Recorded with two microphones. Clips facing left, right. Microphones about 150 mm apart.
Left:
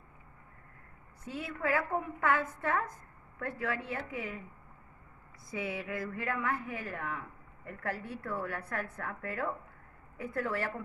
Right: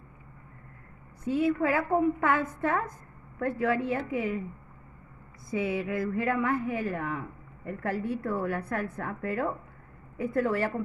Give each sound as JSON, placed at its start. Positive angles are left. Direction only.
{"t": 1.2, "sound": "a man's voice", "side_deg": -20}
{"t": 5.5, "sound": "a man's voice", "side_deg": -25}